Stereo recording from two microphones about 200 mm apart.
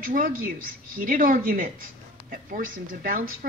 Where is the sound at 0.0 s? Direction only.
45° right (ahead or behind).